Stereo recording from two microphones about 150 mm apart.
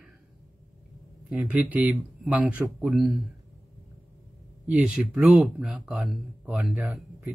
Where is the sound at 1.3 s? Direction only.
10° right (ahead or behind).